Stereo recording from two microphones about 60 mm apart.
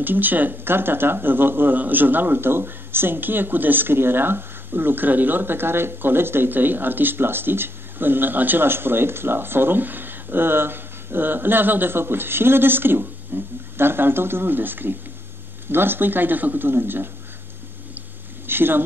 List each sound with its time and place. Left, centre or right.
0.0 s speech: right
18.5 s speech: right